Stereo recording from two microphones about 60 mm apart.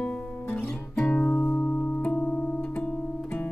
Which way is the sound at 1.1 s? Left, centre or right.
Left.